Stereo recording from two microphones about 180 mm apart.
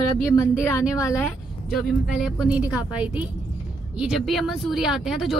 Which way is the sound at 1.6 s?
Centre (ahead or behind).